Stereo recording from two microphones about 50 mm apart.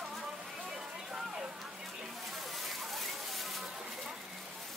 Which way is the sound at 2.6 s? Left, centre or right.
Centre.